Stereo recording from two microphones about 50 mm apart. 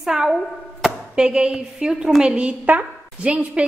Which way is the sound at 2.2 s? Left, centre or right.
Right.